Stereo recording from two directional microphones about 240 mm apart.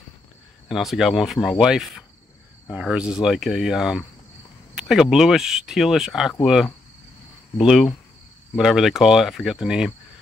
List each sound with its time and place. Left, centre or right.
0.7 s speech: centre